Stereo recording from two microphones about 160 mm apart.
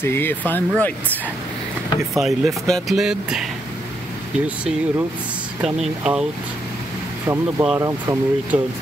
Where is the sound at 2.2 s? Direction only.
Centre (ahead or behind).